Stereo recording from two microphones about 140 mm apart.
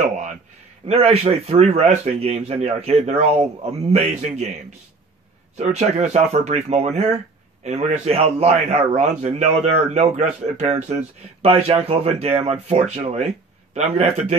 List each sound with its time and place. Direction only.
0.8 s a man's voice: 45° right (ahead or behind)
5.6 s a man's voice: 50° right (ahead or behind)